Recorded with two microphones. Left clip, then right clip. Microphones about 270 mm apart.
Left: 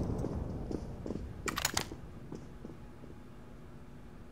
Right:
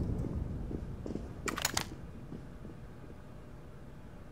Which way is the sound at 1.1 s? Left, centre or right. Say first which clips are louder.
Even; centre.